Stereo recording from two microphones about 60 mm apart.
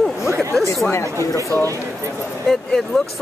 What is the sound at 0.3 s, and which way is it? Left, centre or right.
Speech, right.